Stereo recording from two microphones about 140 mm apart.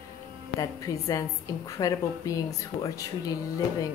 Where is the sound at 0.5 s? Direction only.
25° left (ahead or behind).